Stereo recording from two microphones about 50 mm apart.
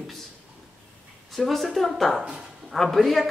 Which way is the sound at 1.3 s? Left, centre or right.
Centre.